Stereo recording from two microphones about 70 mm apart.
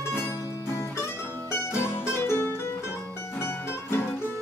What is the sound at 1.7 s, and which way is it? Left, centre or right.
Music, left.